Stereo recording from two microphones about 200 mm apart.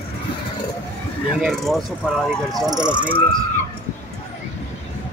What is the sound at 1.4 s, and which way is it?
Speech, centre (ahead or behind).